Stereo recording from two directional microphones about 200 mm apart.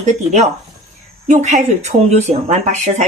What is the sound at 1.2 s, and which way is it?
Speech, 40° right (ahead or behind).